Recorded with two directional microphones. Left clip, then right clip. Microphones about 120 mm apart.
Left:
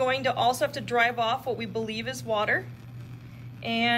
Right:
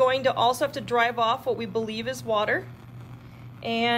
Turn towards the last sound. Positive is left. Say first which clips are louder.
# right 1 dB
turn(degrees=-15)  # may be behind; listen again after turning